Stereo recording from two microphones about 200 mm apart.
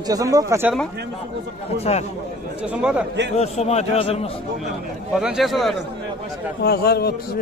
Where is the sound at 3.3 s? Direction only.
30° left (ahead or behind).